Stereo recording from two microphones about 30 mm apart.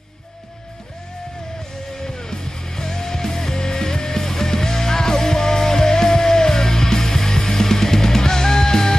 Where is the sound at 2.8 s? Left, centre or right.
Centre.